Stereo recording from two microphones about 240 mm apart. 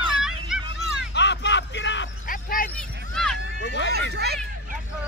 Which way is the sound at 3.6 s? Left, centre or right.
Left.